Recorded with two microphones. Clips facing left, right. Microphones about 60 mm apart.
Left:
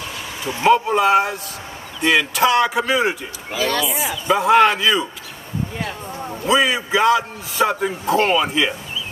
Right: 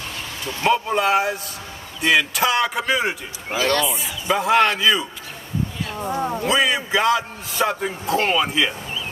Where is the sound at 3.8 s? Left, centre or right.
Left.